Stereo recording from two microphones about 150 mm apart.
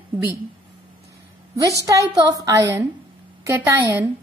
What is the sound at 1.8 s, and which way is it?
A woman's voice, 25° right (ahead or behind).